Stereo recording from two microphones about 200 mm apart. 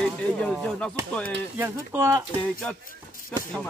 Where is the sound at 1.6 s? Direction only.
10° right (ahead or behind).